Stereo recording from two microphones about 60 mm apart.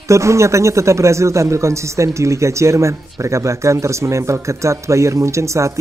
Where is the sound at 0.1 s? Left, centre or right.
Right.